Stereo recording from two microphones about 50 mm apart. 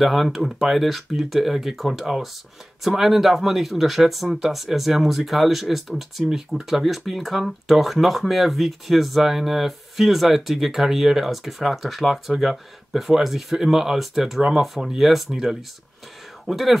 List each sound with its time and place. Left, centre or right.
0.0 s speech: centre